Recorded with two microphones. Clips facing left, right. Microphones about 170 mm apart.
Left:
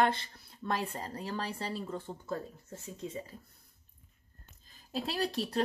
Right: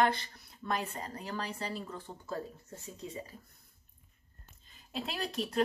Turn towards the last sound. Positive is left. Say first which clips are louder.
# left 3 dB
turn(degrees=35)  # may be behind; listen again after turning